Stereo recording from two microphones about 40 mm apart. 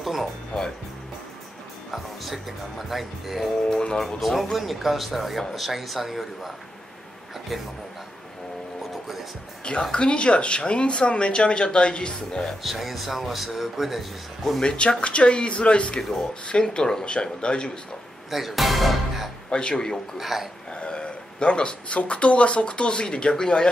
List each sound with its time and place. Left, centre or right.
0.0 s speech: centre
0.5 s speech: left
1.9 s a man's voice: centre
9.9 s speech: left
12.6 s a man's voice: centre
14.6 s speech: left
16.0 s speech: centre
16.4 s speech: left
18.3 s speech: centre
19.5 s speech: left
20.2 s a man's voice: centre
20.7 s speech: left